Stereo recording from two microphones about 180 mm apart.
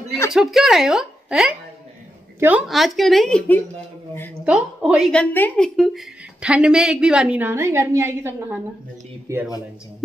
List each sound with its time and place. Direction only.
0.3 s a woman's voice: centre (ahead or behind)
4.5 s a woman's voice: 5° right (ahead or behind)
5.1 s a woman's voice: 10° left (ahead or behind); by 9.4 s 15° right (ahead or behind)